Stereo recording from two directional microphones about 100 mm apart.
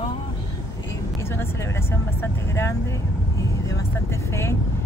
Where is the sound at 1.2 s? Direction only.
25° left (ahead or behind).